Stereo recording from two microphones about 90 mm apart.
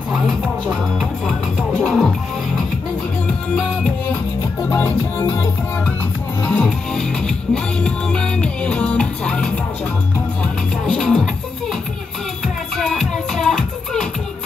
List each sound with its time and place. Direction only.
0.9 s music: 5° left (ahead or behind)
4.7 s music: 20° left (ahead or behind)
6.4 s music: 10° left (ahead or behind)
12.7 s music: 5° left (ahead or behind)